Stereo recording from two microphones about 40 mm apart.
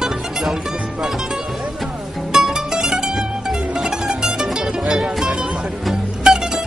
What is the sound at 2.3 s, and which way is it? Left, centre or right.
Music, centre.